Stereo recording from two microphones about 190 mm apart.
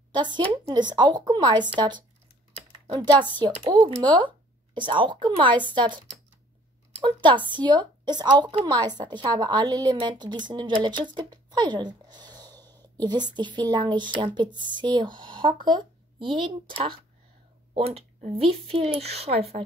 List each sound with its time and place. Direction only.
0.1 s speech: 25° right (ahead or behind)
11.5 s a sound: 25° right (ahead or behind)
12.9 s a woman's voice: 20° right (ahead or behind)